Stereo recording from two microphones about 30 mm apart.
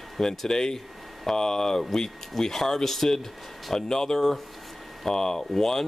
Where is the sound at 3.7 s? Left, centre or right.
Left.